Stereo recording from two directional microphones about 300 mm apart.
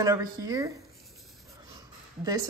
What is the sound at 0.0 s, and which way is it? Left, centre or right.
Speech, centre.